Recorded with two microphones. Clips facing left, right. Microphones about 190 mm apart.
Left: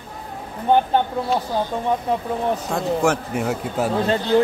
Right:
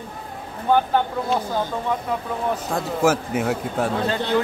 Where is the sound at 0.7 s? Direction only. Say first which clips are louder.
Left 2 dB; 20° left (ahead or behind).